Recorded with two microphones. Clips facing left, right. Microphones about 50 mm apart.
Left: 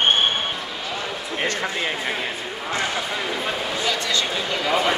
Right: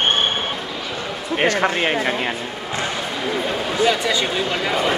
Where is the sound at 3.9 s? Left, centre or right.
Centre.